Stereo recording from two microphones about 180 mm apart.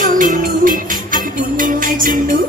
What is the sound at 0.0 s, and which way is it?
Music, 50° right (ahead or behind).